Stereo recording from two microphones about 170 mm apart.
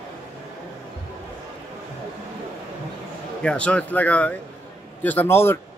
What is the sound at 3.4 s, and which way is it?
Speech, 5° left (ahead or behind).